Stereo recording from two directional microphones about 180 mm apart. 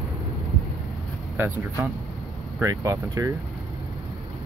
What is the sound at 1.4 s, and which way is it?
Speech, 10° right (ahead or behind).